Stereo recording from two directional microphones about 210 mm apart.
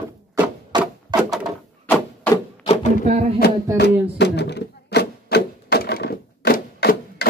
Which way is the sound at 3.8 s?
55° left (ahead or behind).